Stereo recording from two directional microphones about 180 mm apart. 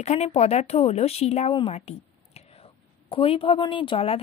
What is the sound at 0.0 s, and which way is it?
A woman's voice, 40° left (ahead or behind).